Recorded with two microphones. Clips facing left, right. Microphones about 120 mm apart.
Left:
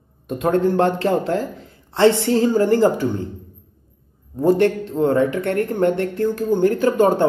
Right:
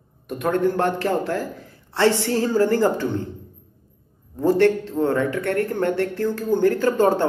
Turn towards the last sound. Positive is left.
turn(degrees=15)  # may be behind; listen again after turning